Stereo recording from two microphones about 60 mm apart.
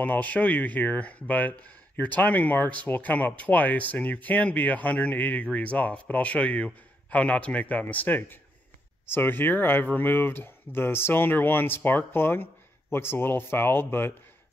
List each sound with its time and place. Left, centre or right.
0.0 s speech: left